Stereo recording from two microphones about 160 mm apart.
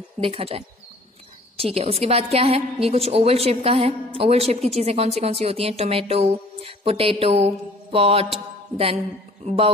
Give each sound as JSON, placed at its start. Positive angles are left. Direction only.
{"t": 0.2, "sound": "a woman's voice", "side_deg": -35}